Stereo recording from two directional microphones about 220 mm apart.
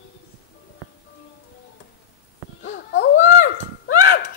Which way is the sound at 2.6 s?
50° left (ahead or behind).